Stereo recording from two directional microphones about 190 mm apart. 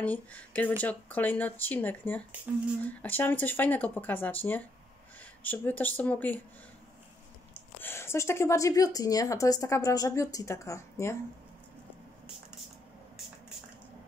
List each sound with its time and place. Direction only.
0.0 s speech: 10° left (ahead or behind)
7.8 s speech: 15° left (ahead or behind)